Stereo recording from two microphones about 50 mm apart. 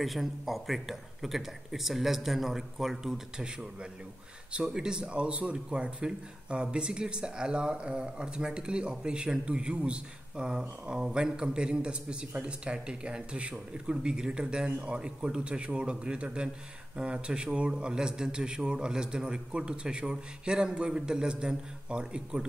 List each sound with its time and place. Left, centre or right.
0.0 s speech: centre
4.6 s a man's voice: centre